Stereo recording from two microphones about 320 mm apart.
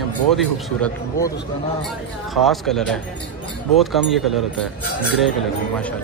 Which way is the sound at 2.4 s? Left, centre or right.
Centre.